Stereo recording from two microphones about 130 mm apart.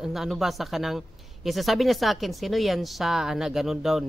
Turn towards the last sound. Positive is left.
turn(degrees=0)  # may be behind; listen again after turning